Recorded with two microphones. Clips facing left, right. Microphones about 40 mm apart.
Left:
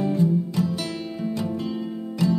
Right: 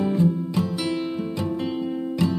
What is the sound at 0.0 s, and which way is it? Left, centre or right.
Music, right.